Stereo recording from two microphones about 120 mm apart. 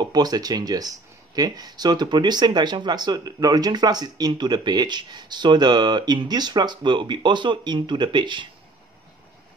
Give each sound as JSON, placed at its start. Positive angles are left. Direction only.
{"t": 0.0, "sound": "speech", "side_deg": -35}